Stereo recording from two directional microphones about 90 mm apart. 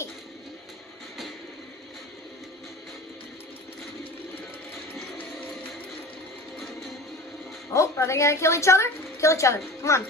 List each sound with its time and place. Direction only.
7.7 s a woman's voice: 35° left (ahead or behind)